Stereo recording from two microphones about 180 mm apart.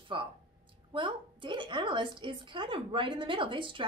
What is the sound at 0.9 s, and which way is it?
Speech, 25° right (ahead or behind).